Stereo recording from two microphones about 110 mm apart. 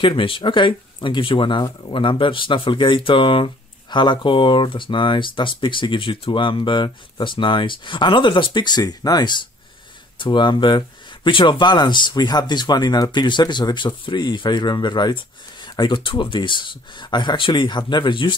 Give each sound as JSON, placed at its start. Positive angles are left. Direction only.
{"t": 0.0, "sound": "speech", "side_deg": 50}